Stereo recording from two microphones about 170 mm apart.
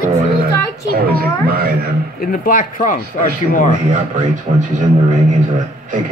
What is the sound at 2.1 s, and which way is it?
Speech, 55° left (ahead or behind).